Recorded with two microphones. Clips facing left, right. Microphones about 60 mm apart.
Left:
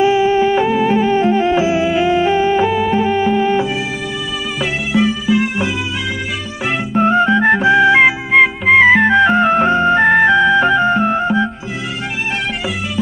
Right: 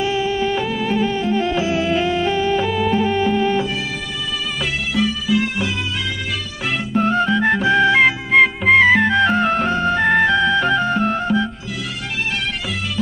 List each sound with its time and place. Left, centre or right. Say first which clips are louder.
0.0 s music: left 7 dB; left
6.9 s music: left 5 dB; left; by 9.0 s centre
9.0 s music: left 5 dB; centre